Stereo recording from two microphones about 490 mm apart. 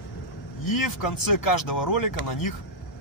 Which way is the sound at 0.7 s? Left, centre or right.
Left.